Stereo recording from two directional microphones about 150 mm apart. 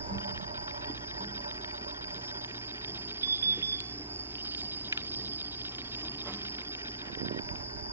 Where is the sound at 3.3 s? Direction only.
15° right (ahead or behind).